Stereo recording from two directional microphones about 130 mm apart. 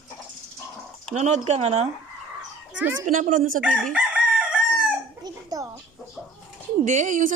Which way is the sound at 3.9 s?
5° right (ahead or behind).